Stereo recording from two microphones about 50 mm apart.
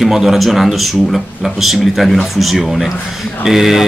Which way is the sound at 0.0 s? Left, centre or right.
Centre.